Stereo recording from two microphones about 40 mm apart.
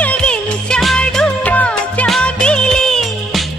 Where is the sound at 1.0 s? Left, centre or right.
Centre.